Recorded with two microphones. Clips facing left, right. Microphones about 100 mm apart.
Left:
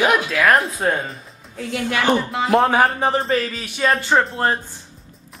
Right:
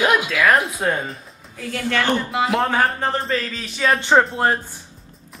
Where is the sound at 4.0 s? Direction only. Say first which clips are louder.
Right 5 dB; 20° right (ahead or behind).